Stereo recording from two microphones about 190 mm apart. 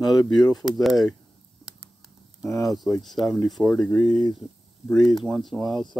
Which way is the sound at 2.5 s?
Centre (ahead or behind).